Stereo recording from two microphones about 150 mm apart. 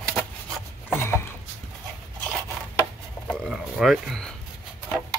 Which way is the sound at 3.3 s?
Centre (ahead or behind).